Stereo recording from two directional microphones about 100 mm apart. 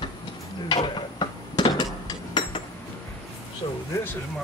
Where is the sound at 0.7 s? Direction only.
55° left (ahead or behind).